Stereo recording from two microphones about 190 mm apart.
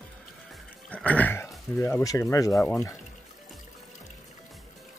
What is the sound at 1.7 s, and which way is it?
Speech, 15° left (ahead or behind).